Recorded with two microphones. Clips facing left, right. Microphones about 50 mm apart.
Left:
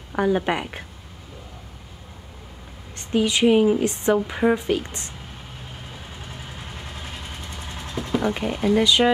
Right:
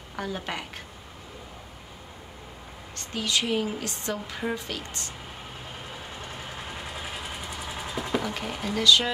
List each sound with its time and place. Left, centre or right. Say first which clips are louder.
0.1 s a woman's voice: left 11 dB; left
3.0 s a woman's voice: left 9 dB; left
6.2 s vehicle: even; centre
8.3 s speech: left 9 dB; centre
8.7 s a woman's voice: left 4 dB; left